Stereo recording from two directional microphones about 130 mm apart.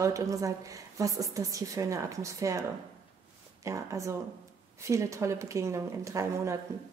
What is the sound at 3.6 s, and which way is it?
A woman's voice, 25° right (ahead or behind).